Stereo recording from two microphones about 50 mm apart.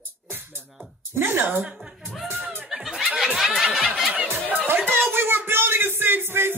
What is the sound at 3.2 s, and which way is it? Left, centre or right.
Snicker, centre.